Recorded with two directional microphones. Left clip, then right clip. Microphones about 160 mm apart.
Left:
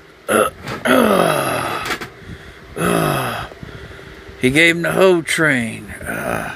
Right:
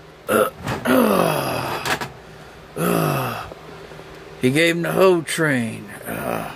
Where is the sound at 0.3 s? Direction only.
15° left (ahead or behind).